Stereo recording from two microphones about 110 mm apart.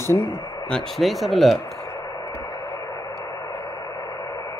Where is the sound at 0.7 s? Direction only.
Centre (ahead or behind).